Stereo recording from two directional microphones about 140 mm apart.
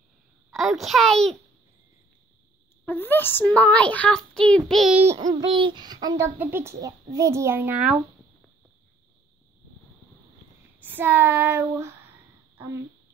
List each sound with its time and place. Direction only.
0.5 s a child's voice: centre (ahead or behind)
2.9 s a child's voice: 15° left (ahead or behind)
5.3 s a child's voice: 35° right (ahead or behind)
6.3 s a child's voice: 15° right (ahead or behind)
10.8 s child singing: 15° right (ahead or behind)